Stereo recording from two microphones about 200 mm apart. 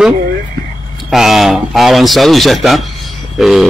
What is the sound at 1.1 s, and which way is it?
Speech, centre (ahead or behind).